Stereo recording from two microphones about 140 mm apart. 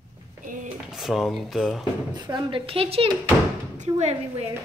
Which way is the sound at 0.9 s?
Centre (ahead or behind).